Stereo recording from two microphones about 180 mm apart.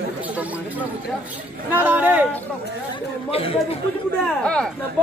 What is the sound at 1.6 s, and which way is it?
Speech, 10° right (ahead or behind).